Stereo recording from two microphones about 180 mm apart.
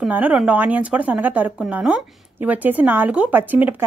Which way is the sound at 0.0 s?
10° right (ahead or behind).